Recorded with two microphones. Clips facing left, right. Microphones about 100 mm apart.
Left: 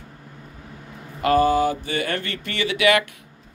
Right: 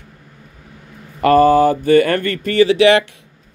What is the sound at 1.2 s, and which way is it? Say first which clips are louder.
Speech: right 7 dB; 50° right (ahead or behind).